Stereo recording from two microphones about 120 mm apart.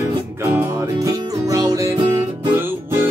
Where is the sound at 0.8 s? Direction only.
30° right (ahead or behind).